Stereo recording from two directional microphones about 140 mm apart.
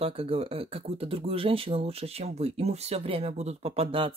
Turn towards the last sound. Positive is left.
turn(degrees=-40)  # may be behind; listen again after turning